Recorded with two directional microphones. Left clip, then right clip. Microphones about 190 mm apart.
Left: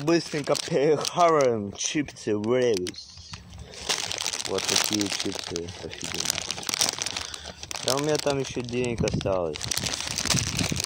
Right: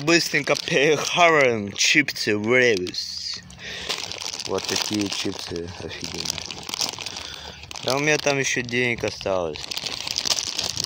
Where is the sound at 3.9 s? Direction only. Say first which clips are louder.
Left 2 dB; centre (ahead or behind).